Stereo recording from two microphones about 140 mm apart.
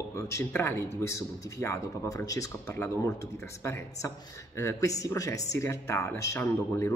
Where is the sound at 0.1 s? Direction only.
20° left (ahead or behind).